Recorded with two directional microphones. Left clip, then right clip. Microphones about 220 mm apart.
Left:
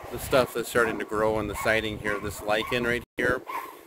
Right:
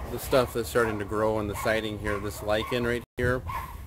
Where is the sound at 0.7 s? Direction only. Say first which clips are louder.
Left 2 dB; 20° left (ahead or behind).